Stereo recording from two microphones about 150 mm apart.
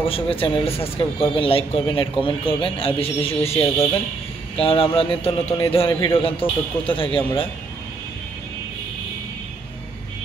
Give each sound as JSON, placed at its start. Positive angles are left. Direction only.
{"t": 0.0, "sound": "speech", "side_deg": 40}
{"t": 3.6, "sound": "speech", "side_deg": 20}
{"t": 4.6, "sound": "speech", "side_deg": 40}